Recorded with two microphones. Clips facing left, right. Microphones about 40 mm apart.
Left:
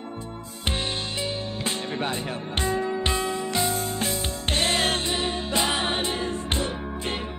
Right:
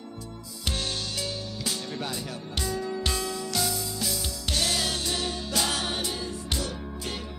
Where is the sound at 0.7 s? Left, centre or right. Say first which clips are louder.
Left 3 dB; left.